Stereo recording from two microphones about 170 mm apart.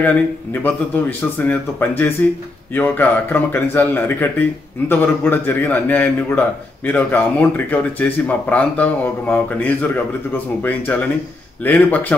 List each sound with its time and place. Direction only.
0.0 s speech: 10° left (ahead or behind)